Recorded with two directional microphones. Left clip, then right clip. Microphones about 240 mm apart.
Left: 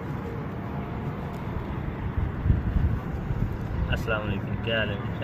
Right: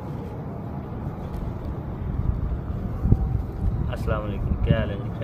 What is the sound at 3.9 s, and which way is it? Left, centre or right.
Vehicle, right.